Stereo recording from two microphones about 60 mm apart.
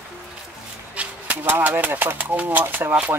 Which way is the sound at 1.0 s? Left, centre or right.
Right.